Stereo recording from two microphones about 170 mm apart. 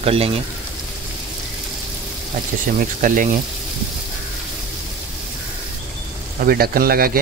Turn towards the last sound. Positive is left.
turn(degrees=-60)  # may be behind; listen again after turning